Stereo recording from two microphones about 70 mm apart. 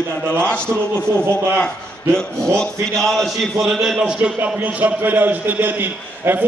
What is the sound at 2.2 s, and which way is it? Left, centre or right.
A man's voice, centre.